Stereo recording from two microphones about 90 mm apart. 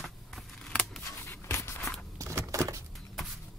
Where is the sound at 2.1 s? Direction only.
35° right (ahead or behind).